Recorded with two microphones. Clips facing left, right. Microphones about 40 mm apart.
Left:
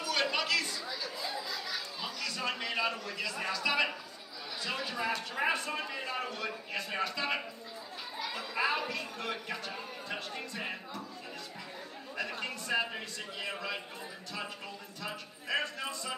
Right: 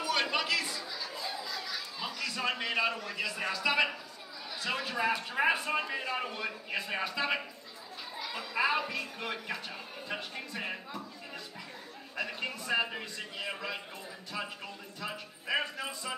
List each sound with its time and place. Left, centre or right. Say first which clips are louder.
0.0 s chatter: right 1 dB; centre
0.8 s chatter: left 1 dB; centre
2.0 s a sound: right 3 dB; centre
3.1 s speech: right 1 dB; centre
4.8 s speech: right 4 dB; centre
12.2 s a man's voice: right 1 dB; centre
15.0 s speech: right 2 dB; centre